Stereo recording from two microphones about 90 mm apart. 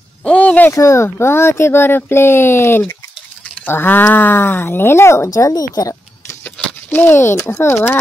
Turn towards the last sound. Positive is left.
turn(degrees=25)  # may be behind; listen again after turning